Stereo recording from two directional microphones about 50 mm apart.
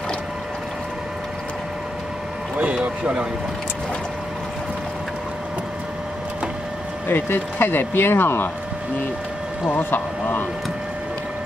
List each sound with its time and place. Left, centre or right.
2.5 s speech: right
7.1 s speech: left
9.7 s speech: left